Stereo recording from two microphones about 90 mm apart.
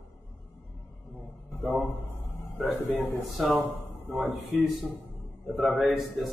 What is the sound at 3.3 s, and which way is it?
A man's voice, centre (ahead or behind).